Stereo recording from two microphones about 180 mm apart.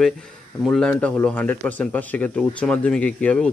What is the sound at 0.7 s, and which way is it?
Speech, 5° left (ahead or behind).